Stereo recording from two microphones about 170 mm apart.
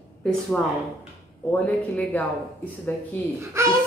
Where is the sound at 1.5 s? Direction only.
10° left (ahead or behind).